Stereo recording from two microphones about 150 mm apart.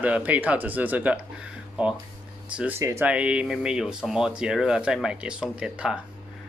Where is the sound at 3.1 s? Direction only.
5° right (ahead or behind).